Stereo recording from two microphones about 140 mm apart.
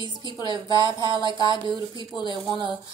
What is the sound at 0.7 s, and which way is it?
Speech, 25° left (ahead or behind).